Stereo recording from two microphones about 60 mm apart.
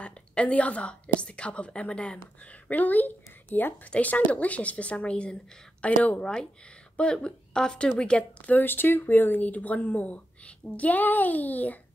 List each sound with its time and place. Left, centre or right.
0.0 s a woman's voice: centre